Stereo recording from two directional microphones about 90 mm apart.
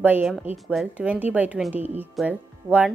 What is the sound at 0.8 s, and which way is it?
Speech, 15° right (ahead or behind).